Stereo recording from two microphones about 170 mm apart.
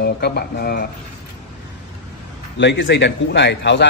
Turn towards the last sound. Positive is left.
turn(degrees=90)